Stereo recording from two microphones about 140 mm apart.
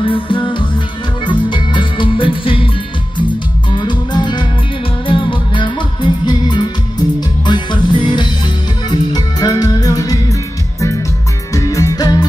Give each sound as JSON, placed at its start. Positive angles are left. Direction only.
{"t": 0.0, "sound": "music", "side_deg": 40}
{"t": 3.7, "sound": "music", "side_deg": 35}
{"t": 11.5, "sound": "music", "side_deg": 25}